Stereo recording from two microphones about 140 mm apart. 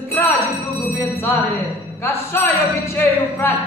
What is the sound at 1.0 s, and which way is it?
A woman's voice, 20° left (ahead or behind).